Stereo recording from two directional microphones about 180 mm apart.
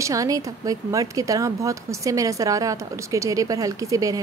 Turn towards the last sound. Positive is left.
turn(degrees=-20)  # may be behind; listen again after turning